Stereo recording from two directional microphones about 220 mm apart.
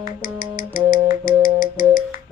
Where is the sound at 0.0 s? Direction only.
40° left (ahead or behind).